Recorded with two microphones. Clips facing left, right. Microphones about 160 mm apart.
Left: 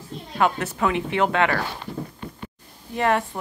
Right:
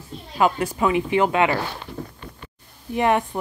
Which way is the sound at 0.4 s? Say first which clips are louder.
Right 2 dB; 5° right (ahead or behind).